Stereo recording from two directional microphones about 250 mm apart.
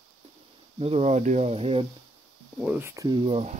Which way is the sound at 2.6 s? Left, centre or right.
Centre.